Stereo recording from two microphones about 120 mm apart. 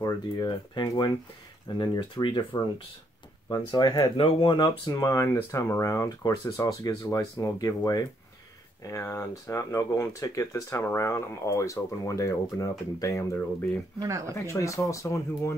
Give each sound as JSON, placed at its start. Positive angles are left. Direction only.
{"t": 0.0, "sound": "speech", "side_deg": 35}
{"t": 4.2, "sound": "speech", "side_deg": 45}
{"t": 13.9, "sound": "speech", "side_deg": -25}
{"t": 14.4, "sound": "speech", "side_deg": 25}